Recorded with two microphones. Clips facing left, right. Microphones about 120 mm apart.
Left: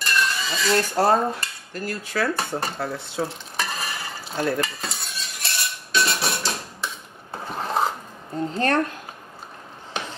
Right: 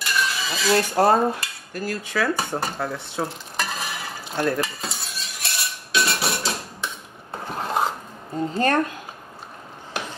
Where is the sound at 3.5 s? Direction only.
Centre (ahead or behind).